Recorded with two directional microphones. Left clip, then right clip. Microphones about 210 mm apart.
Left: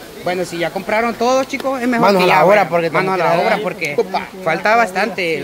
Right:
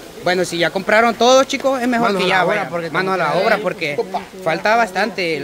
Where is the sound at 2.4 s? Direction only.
45° left (ahead or behind).